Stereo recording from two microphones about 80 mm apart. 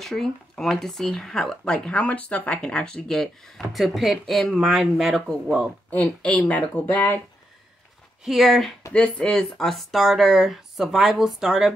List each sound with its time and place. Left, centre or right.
0.0 s speech: centre
5.9 s speech: centre
8.2 s speech: centre